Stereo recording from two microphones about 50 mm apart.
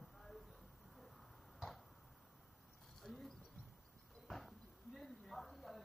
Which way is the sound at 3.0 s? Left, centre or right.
Centre.